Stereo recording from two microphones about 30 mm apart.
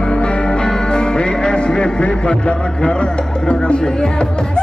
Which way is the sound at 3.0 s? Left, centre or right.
Left.